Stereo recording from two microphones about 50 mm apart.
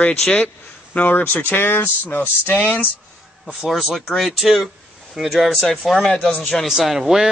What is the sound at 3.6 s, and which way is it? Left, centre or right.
Speech, centre.